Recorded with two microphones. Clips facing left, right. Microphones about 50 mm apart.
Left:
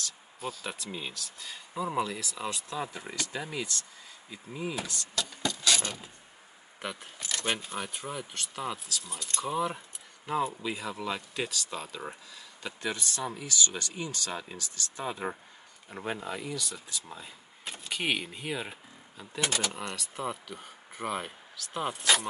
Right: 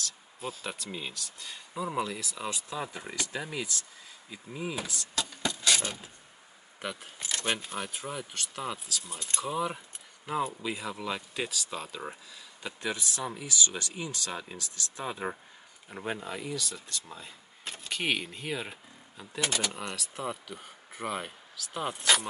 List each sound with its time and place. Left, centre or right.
0.9 s speech: centre
5.4 s mechanisms: right
5.7 s mechanisms: centre
6.8 s speech: centre
7.2 s speech: centre
7.4 s speech: centre